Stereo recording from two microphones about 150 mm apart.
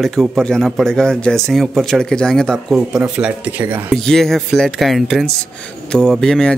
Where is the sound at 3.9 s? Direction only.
5° left (ahead or behind).